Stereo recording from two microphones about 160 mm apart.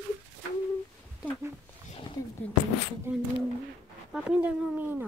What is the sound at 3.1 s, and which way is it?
Speech, 15° right (ahead or behind).